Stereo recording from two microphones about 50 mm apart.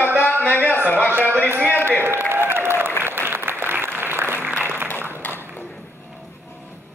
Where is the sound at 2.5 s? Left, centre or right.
Right.